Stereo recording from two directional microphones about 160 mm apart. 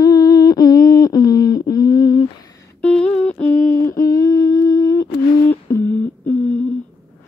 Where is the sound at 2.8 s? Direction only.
5° left (ahead or behind); by 5.1 s 25° left (ahead or behind).